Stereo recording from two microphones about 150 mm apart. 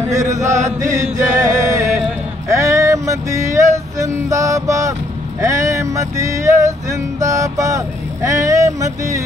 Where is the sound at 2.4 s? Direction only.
20° right (ahead or behind).